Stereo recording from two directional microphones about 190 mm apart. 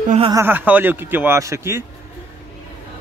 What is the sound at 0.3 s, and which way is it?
A man's voice, 10° right (ahead or behind).